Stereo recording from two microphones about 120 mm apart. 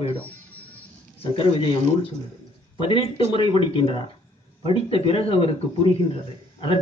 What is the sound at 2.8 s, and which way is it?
Speech, 45° left (ahead or behind).